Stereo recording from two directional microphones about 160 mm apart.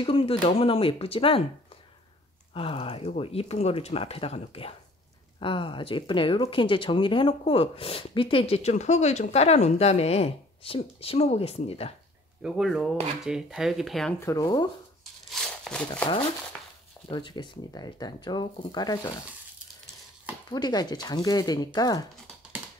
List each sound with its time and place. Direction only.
0.0 s speech: 35° left (ahead or behind)
2.5 s speech: 35° left (ahead or behind)
12.4 s speech: 5° right (ahead or behind)
14.2 s speech: 20° left (ahead or behind)
15.2 s a sound: centre (ahead or behind)
17.1 s speech: 30° left (ahead or behind)
20.4 s speech: 25° left (ahead or behind)